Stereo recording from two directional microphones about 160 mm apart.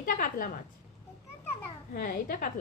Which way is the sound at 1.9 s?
60° left (ahead or behind).